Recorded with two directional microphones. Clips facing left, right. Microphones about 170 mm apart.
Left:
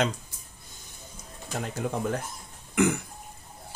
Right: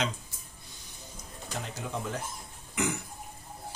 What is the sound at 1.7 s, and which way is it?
Speech, 55° left (ahead or behind).